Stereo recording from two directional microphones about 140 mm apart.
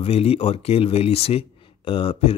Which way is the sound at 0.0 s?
45° left (ahead or behind).